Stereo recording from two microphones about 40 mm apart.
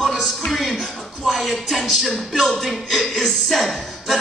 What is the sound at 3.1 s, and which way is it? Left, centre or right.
Speech, centre.